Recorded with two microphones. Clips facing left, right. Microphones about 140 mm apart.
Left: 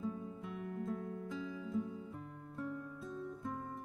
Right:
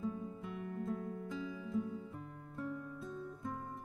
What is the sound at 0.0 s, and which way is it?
Music, centre (ahead or behind).